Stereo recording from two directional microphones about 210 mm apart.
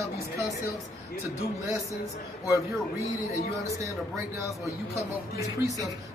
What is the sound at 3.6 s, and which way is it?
Speech, 15° right (ahead or behind).